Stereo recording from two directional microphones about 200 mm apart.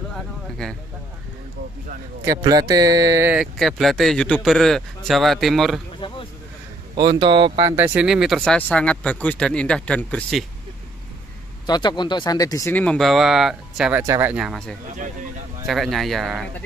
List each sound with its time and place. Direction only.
2.2 s speech: 20° right (ahead or behind); by 5.8 s centre (ahead or behind)
5.9 s a sound: 25° left (ahead or behind)
7.0 s speech: 25° right (ahead or behind); by 10.4 s 5° left (ahead or behind)
11.6 s speech: 20° left (ahead or behind); by 16.6 s centre (ahead or behind)